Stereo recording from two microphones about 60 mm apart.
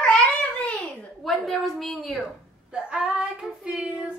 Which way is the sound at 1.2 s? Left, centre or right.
Centre.